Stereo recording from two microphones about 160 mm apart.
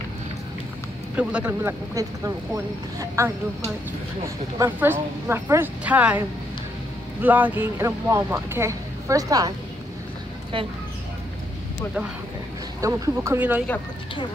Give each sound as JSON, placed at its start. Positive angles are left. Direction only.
{"t": 1.1, "sound": "speech", "side_deg": -10}
{"t": 4.6, "sound": "speech", "side_deg": -10}
{"t": 12.8, "sound": "speech", "side_deg": -20}